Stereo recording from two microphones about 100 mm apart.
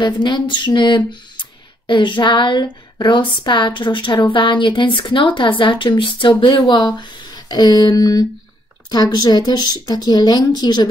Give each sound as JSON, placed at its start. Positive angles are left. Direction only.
{"t": 0.0, "sound": "a woman's voice", "side_deg": 50}